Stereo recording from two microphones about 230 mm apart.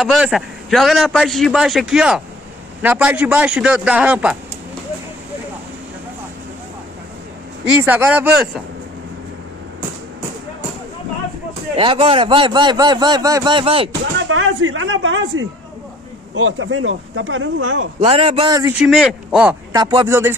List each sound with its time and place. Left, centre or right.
0.0 s a man's voice: centre
7.6 s speech: centre
11.7 s speech: right
14.1 s speech: right
18.0 s speech: right
18.8 s a man's voice: centre
19.7 s speech: centre